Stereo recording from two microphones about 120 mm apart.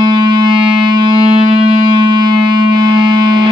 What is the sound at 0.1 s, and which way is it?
Music, 40° right (ahead or behind).